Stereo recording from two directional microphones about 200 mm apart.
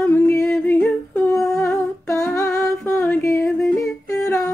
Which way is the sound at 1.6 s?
15° left (ahead or behind).